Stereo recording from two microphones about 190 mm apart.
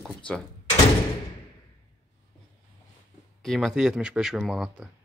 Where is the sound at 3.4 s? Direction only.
Centre (ahead or behind).